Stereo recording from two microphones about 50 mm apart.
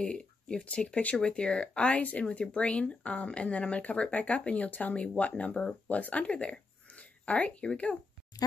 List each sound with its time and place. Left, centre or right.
0.0 s speech: centre